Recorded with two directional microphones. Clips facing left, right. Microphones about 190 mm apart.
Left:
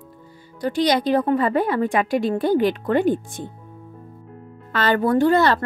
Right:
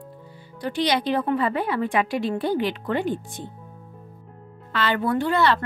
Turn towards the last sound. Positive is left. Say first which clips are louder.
# left 5 dB
turn(degrees=40)  # may be behind; listen again after turning